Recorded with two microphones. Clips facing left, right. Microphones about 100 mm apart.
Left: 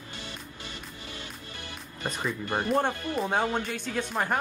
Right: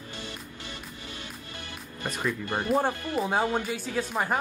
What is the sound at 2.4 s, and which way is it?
Speech, 20° left (ahead or behind).